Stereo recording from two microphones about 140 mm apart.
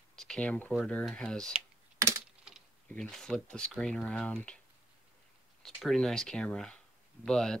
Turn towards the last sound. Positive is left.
turn(degrees=5)  # may be behind; listen again after turning